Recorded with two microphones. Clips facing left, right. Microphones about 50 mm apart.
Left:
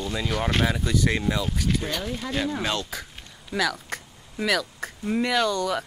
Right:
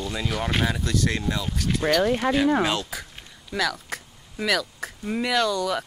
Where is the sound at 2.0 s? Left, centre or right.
Right.